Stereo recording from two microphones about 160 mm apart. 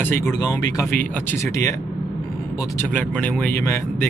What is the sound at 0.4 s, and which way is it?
Speech, 20° left (ahead or behind).